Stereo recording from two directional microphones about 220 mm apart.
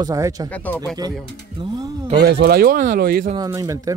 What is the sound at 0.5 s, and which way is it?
Speech, 5° left (ahead or behind).